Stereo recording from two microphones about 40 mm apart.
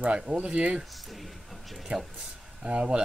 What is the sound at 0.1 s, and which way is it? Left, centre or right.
Speech, right.